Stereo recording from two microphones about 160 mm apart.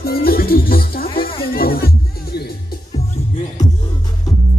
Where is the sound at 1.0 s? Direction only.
30° left (ahead or behind).